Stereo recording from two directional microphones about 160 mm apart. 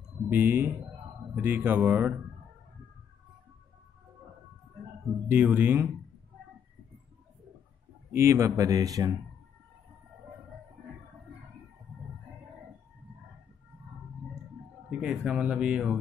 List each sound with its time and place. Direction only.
0.3 s speech: 10° right (ahead or behind)
5.3 s speech: 10° right (ahead or behind)
8.1 s speech: 15° right (ahead or behind)
14.9 s speech: 5° right (ahead or behind)